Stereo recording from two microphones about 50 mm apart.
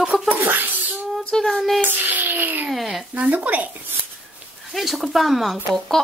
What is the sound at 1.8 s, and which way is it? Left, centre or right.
Speech, right.